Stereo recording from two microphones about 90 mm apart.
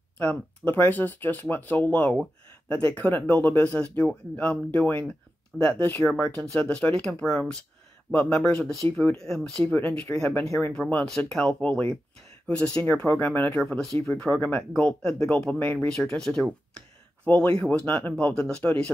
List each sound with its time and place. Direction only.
0.2 s speech: 20° left (ahead or behind)
13.6 s speech: 5° left (ahead or behind)